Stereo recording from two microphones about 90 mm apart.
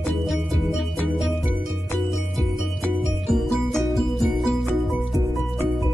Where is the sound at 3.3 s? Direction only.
Centre (ahead or behind).